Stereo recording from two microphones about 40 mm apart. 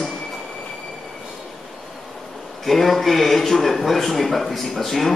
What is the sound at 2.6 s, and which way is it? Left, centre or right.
A man's voice, centre.